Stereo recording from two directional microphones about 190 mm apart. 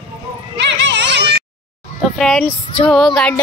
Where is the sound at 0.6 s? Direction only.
70° right (ahead or behind).